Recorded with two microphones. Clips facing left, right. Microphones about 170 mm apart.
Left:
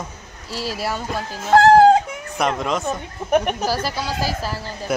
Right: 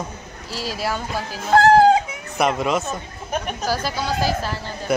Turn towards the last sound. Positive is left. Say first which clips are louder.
# right 1 dB
turn(degrees=5)  # may be behind; listen again after turning